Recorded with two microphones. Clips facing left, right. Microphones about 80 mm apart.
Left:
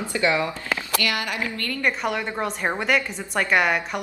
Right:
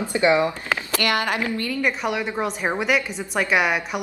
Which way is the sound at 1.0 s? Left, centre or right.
Right.